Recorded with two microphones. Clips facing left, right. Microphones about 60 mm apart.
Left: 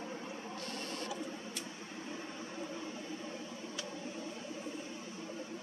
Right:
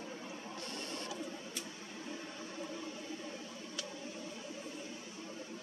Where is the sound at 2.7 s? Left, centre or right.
Left.